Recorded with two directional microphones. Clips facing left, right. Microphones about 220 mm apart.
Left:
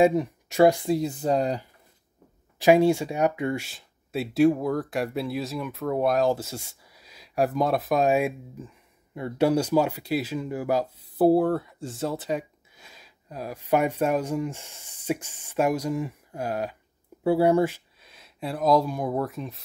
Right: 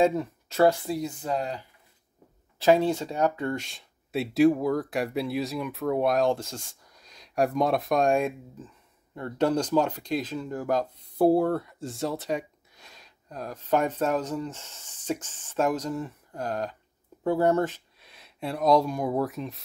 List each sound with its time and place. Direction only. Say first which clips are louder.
0.0 s speech: left 3 dB; 15° left (ahead or behind)
1.0 s speech: left 5 dB; 40° left (ahead or behind)
2.6 s speech: left 3 dB; 10° left (ahead or behind)